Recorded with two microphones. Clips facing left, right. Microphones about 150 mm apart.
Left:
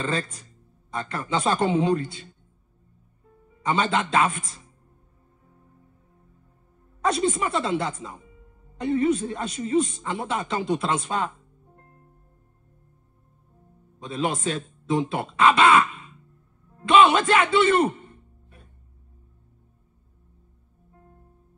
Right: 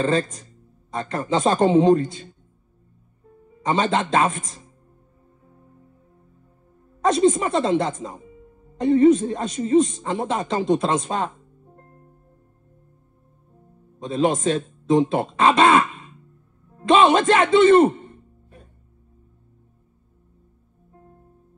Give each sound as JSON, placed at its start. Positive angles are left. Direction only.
{"t": 0.0, "sound": "a man's voice", "side_deg": -30}
{"t": 1.9, "sound": "speech", "side_deg": -40}
{"t": 3.6, "sound": "a man's voice", "side_deg": -30}
{"t": 7.0, "sound": "a man's voice", "side_deg": -40}
{"t": 13.9, "sound": "a man's voice", "side_deg": -35}